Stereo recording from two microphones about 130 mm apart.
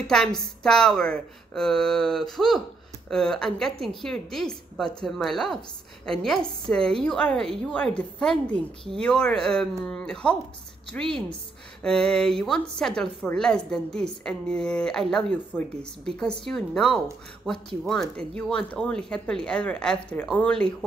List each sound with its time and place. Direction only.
0.0 s a woman's voice: 5° left (ahead or behind)